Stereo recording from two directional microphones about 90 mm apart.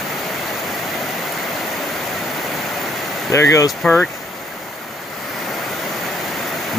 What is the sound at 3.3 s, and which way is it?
Speech, 35° left (ahead or behind).